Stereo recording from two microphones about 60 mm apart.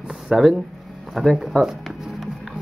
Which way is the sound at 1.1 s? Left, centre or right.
Centre.